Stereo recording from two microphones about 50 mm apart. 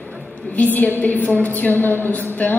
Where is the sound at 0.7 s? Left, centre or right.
Left.